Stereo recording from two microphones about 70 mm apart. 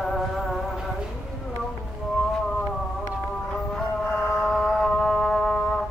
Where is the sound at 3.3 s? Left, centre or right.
Centre.